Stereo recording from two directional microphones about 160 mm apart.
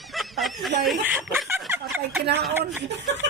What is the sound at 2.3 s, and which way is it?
Speech, 90° right.